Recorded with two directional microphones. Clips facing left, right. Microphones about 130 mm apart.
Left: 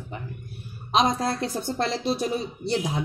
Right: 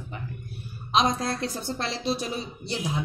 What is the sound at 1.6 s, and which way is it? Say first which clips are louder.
Speech: left 3 dB; 45° left (ahead or behind).